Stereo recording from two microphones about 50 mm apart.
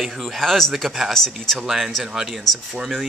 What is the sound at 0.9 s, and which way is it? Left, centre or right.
Speech, centre.